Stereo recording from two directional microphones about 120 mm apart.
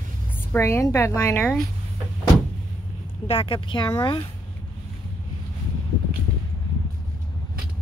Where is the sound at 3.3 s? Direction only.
50° left (ahead or behind).